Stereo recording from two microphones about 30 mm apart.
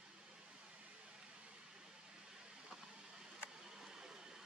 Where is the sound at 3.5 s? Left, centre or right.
Centre.